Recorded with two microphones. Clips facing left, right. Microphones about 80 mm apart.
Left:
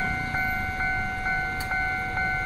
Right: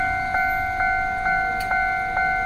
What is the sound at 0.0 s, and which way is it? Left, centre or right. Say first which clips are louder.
Music: right 6 dB; right.